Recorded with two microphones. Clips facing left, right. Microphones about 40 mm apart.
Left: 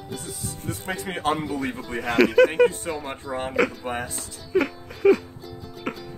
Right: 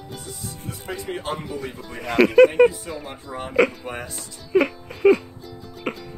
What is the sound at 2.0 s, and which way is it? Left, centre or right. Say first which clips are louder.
Speech: right 2 dB; centre.